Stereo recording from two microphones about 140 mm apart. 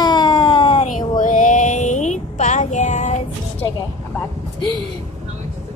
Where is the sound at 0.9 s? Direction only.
65° left (ahead or behind).